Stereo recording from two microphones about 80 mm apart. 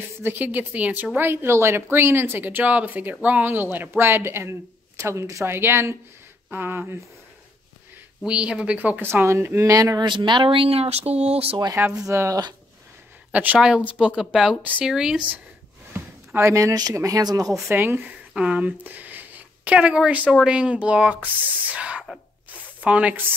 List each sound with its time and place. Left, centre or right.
0.2 s speech: right
8.3 s a woman's voice: centre
9.0 s speech: right
9.7 s speech: right
10.0 s speech: right
11.8 s speech: right
13.3 s a woman's voice: centre
16.3 s speech: right
17.6 s speech: right
18.3 s a woman's voice: centre